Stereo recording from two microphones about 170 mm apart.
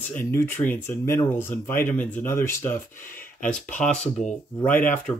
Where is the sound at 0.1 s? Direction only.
15° left (ahead or behind).